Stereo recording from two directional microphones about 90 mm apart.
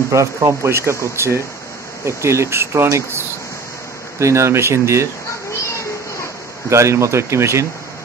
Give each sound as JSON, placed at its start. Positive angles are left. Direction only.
{"t": 0.1, "sound": "speech", "side_deg": -35}
{"t": 6.7, "sound": "speech", "side_deg": -35}